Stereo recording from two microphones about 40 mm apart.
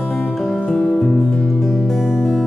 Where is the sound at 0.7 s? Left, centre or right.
Centre.